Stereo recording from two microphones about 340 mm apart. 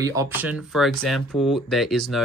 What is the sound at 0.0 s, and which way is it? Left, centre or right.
Speech, centre.